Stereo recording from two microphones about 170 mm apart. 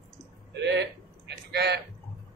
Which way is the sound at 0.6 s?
85° right.